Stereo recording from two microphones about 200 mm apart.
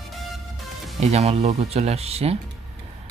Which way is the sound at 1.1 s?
30° right (ahead or behind).